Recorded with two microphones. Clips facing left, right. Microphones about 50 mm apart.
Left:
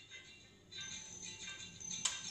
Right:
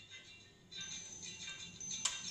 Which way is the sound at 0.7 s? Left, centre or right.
Centre.